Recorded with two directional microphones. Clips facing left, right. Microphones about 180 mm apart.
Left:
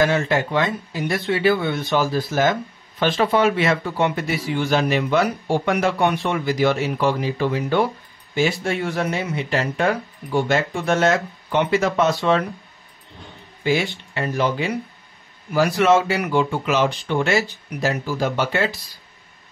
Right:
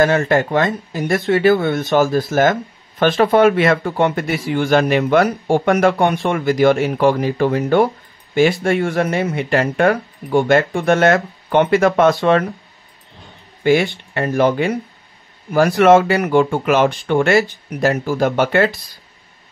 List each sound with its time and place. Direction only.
0.0 s speech: 45° right (ahead or behind)
13.7 s speech: 55° right (ahead or behind)